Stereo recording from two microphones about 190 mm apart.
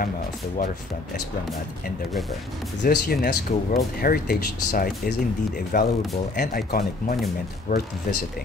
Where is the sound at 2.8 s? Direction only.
50° left (ahead or behind).